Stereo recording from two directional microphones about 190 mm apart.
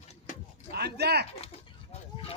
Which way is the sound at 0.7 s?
60° right (ahead or behind).